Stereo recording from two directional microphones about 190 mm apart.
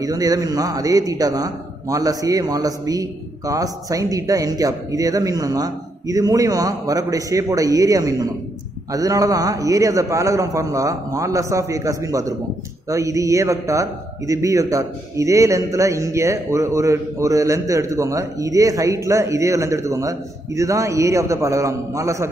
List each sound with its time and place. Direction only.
0.0 s a man's voice: 20° right (ahead or behind)